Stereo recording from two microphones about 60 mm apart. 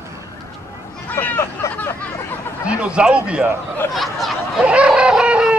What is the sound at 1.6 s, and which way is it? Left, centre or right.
Vehicle, left.